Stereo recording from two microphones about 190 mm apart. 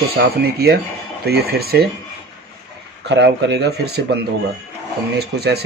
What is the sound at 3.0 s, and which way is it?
Speech, 65° right (ahead or behind).